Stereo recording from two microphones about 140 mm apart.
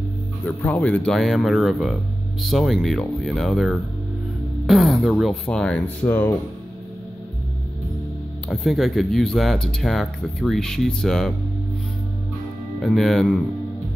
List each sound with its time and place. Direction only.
0.6 s speech: 10° left (ahead or behind)
8.5 s speech: centre (ahead or behind)
12.8 s speech: 5° left (ahead or behind)